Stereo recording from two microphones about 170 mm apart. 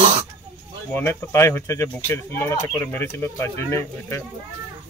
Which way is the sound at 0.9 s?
15° left (ahead or behind).